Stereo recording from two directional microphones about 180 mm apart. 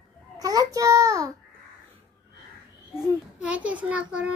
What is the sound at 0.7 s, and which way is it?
Speech, 20° right (ahead or behind).